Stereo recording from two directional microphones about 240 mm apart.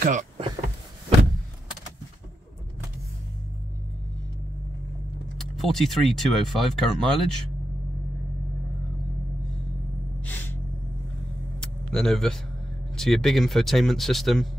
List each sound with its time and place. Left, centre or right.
0.0 s power windows: right
5.4 s speech: centre
10.2 s gasp: centre
11.6 s vehicle: centre
12.9 s speech: centre